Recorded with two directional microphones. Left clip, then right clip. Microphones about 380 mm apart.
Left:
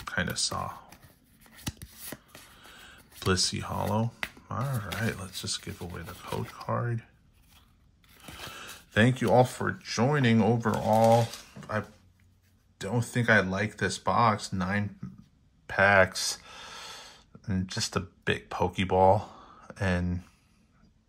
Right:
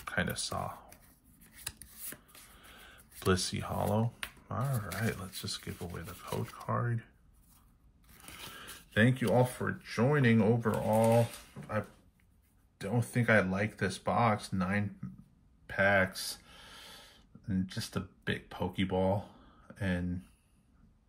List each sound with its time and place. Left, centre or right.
0.0 s speech: centre
2.7 s speech: centre
8.2 s speech: centre
12.7 s speech: centre
15.6 s a sound: centre
17.6 s speech: centre